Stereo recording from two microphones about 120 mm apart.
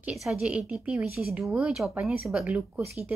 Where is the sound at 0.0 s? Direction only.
5° right (ahead or behind).